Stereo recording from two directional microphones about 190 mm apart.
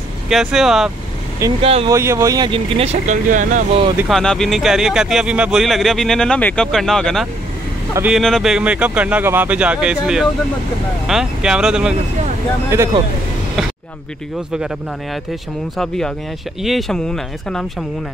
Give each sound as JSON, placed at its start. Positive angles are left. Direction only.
{"t": 0.3, "sound": "speech", "side_deg": 0}
{"t": 1.6, "sound": "speech", "side_deg": -30}
{"t": 1.9, "sound": "speech", "side_deg": -15}
{"t": 4.1, "sound": "speech", "side_deg": 0}
{"t": 7.9, "sound": "speech", "side_deg": -10}
{"t": 12.7, "sound": "speech", "side_deg": -15}
{"t": 16.6, "sound": "speech", "side_deg": 0}